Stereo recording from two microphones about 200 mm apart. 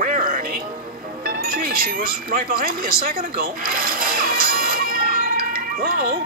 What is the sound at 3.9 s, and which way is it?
Music, 45° right (ahead or behind).